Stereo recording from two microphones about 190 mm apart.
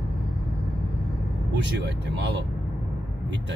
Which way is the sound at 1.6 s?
65° right (ahead or behind).